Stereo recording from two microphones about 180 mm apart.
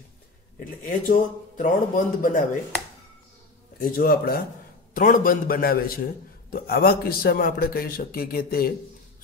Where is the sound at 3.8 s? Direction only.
55° left (ahead or behind).